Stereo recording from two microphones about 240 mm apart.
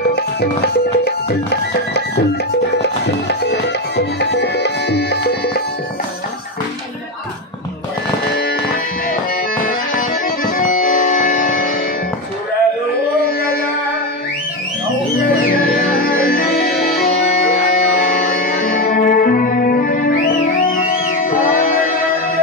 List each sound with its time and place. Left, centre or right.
0.1 s music: left
9.7 s music: left
15.2 s music: left